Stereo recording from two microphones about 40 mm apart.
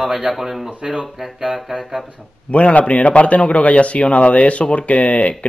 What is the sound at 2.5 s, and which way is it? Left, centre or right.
Speech, left.